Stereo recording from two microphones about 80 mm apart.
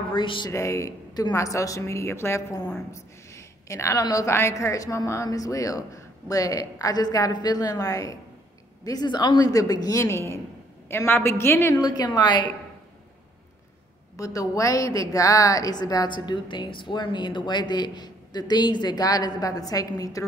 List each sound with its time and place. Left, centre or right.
0.1 s speech: left
0.5 s a woman's voice: left
4.3 s speech: left
8.8 s speech: left
10.0 s a woman's voice: left
11.7 s a woman's voice: left
14.1 s a woman's voice: left